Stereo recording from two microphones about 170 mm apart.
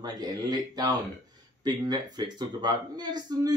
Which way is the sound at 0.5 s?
25° right (ahead or behind).